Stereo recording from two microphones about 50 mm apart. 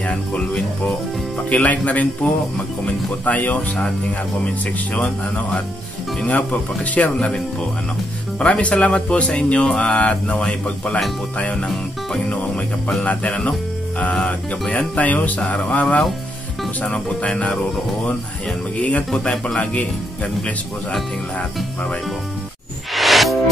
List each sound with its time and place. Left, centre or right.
0.5 s speech: centre
1.5 s speech: left
4.9 s speech: left
8.4 s speech: left
12.3 s speech: left
14.7 s speech: left
18.8 s speech: left
22.9 s music: centre